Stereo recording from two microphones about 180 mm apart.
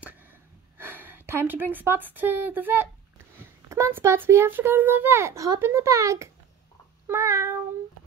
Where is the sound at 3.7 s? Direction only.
15° right (ahead or behind).